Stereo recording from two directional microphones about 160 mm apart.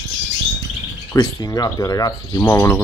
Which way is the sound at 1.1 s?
20° left (ahead or behind).